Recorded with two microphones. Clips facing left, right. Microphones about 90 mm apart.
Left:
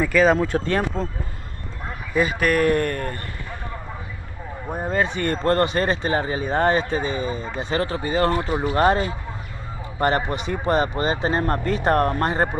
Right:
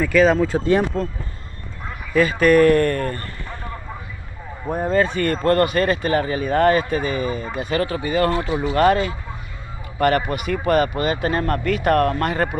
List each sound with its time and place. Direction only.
0.0 s speech: 15° left (ahead or behind)
0.6 s speech: 10° right (ahead or behind)
2.1 s speech: 15° left (ahead or behind)
4.7 s speech: 15° left (ahead or behind)